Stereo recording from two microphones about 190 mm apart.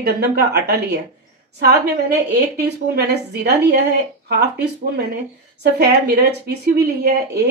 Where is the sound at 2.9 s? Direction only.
60° right (ahead or behind).